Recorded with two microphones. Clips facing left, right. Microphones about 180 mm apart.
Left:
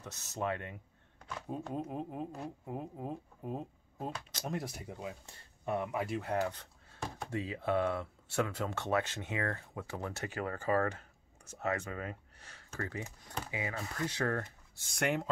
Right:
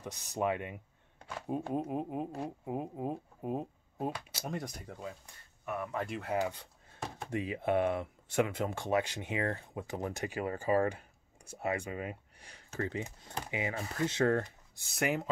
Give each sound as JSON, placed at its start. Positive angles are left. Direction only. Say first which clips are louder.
{"t": 0.0, "sound": "speech", "louder": "right 4 dB", "side_deg": -15}
{"t": 5.2, "sound": "speech", "louder": "left 4 dB", "side_deg": 25}
{"t": 6.0, "sound": "speech", "louder": "left 2 dB", "side_deg": 0}
{"t": 6.3, "sound": "speech", "louder": "right 3 dB", "side_deg": -10}
{"t": 14.9, "sound": "speech", "louder": "right 1 dB", "side_deg": -5}